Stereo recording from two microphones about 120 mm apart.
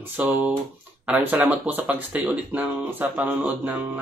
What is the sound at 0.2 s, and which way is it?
Speech, 15° right (ahead or behind).